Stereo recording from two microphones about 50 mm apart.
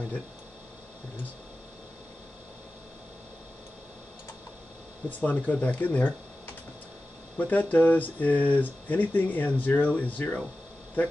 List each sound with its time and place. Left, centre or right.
5.2 s speech: left